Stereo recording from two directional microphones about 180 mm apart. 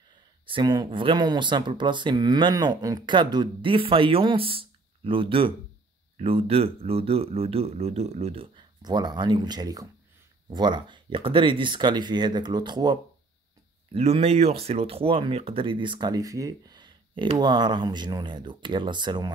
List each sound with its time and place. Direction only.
0.5 s speech: 25° right (ahead or behind)